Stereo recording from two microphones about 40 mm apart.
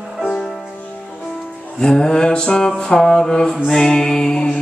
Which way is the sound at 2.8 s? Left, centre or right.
Centre.